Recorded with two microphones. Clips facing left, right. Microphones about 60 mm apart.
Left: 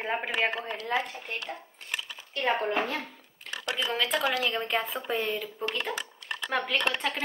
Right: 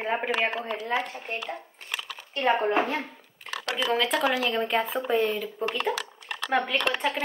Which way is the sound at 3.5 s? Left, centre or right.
Centre.